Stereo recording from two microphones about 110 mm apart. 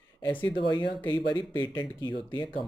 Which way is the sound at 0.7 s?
45° left (ahead or behind).